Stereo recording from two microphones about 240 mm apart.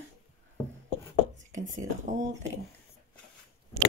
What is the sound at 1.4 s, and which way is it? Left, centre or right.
Whispering, right.